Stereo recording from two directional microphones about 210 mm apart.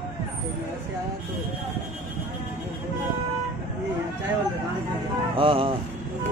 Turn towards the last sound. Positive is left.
turn(degrees=-25)  # may be behind; listen again after turning